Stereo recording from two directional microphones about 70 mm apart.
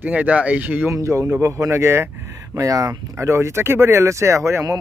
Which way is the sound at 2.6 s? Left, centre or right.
Right.